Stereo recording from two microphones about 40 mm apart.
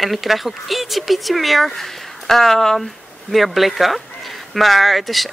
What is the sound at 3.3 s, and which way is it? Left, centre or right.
Speech, centre.